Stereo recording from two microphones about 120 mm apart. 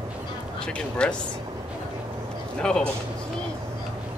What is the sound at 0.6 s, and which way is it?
Speech, 10° left (ahead or behind).